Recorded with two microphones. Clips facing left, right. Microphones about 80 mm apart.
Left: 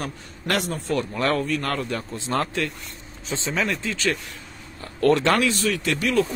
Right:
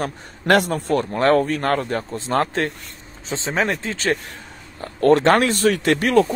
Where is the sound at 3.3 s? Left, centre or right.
Right.